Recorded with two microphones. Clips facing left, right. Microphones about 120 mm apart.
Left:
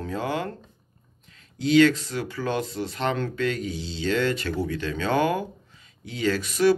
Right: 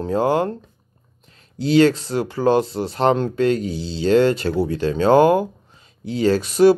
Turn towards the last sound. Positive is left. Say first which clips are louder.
# right 7 dB
turn(degrees=-30)  # may be behind; listen again after turning